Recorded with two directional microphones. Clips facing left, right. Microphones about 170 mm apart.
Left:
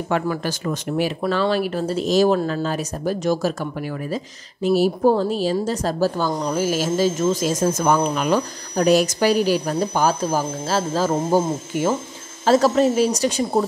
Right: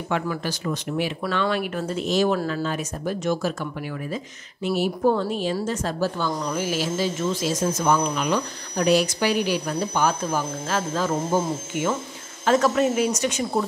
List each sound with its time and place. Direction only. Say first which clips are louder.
0.1 s speech: left 3 dB; 45° left (ahead or behind)